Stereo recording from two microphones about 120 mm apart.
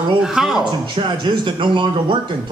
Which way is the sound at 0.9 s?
40° right (ahead or behind).